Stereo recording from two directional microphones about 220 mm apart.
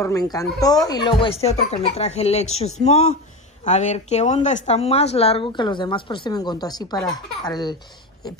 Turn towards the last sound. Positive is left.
turn(degrees=20)  # may be behind; listen again after turning